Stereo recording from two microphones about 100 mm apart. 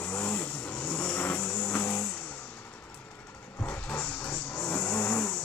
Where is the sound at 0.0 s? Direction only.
20° left (ahead or behind).